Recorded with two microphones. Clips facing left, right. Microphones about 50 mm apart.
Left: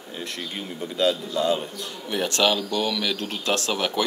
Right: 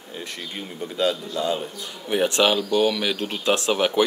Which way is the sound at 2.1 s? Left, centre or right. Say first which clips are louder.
Right 3 dB; right.